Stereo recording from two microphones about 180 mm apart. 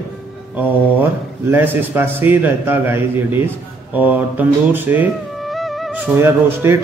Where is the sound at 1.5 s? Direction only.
10° right (ahead or behind).